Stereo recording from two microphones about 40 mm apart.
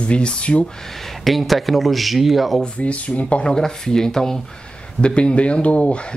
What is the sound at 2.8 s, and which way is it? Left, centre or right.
Speech, left.